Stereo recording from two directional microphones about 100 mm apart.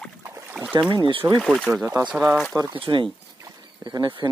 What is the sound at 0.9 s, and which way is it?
Speech, 55° right (ahead or behind).